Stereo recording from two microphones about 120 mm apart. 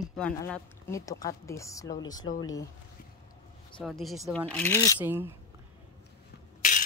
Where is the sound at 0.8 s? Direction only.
25° left (ahead or behind).